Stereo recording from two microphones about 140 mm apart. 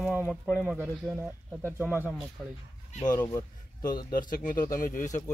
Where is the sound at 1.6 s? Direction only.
15° right (ahead or behind).